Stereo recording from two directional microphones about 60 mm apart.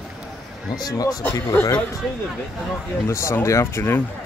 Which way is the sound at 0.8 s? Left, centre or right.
Left.